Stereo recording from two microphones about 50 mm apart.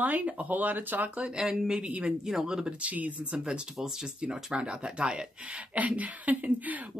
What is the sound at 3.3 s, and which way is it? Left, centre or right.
Speech, centre.